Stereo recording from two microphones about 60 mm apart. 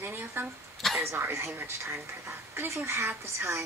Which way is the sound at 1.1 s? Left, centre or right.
Right.